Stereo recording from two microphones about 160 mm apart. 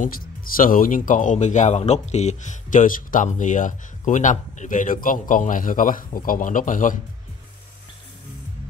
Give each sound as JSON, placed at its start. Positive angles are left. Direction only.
{"t": 0.6, "sound": "speech", "side_deg": 60}